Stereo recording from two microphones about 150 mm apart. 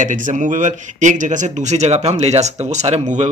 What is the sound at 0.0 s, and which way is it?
Speech, 60° right (ahead or behind).